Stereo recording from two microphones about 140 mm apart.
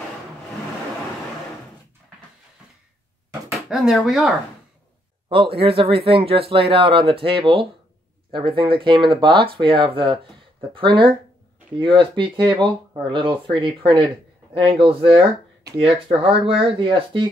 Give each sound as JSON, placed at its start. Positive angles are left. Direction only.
{"t": 3.5, "sound": "speech", "side_deg": 0}
{"t": 5.3, "sound": "speech", "side_deg": -40}
{"t": 16.3, "sound": "speech", "side_deg": -40}